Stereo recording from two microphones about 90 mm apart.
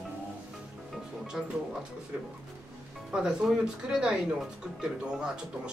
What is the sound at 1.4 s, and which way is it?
Speech, 5° right (ahead or behind).